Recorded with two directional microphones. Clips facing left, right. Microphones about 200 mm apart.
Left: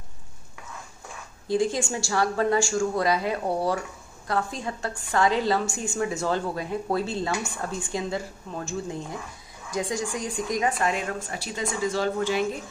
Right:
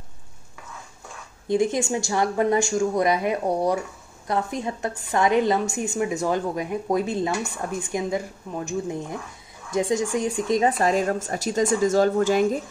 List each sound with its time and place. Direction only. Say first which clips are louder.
1.5 s a woman's voice: right 3 dB; 20° right (ahead or behind)
10.8 s a woman's voice: right 6 dB; 40° right (ahead or behind)